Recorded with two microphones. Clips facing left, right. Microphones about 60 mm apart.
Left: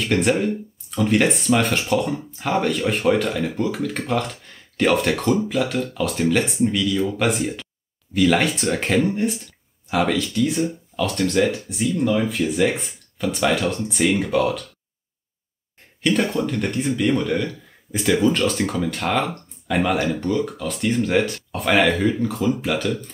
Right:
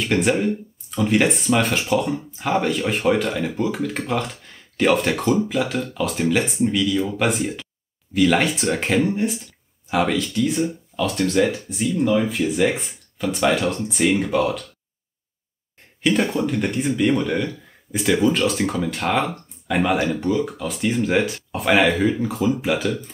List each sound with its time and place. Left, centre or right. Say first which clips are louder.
0.0 s speech: even; centre
16.0 s speech: right 1 dB; centre